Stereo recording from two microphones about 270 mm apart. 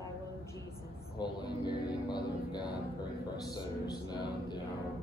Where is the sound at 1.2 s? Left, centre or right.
Centre.